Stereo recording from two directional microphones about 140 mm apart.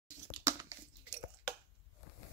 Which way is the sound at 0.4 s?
25° right (ahead or behind).